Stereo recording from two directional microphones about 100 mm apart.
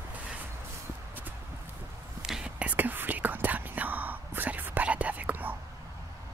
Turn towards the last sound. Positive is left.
turn(degrees=-15)  # may be behind; listen again after turning